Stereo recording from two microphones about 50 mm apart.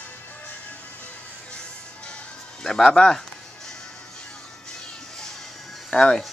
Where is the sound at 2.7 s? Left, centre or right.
Centre.